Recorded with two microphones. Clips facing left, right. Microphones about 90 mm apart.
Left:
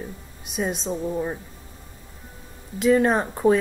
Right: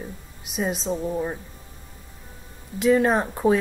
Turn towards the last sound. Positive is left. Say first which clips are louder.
# left 1 dB
turn(degrees=0)  # may be behind; listen again after turning